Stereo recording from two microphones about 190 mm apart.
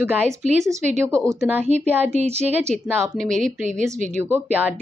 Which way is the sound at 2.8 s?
10° right (ahead or behind).